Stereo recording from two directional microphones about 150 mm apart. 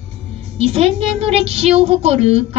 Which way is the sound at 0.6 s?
45° right (ahead or behind).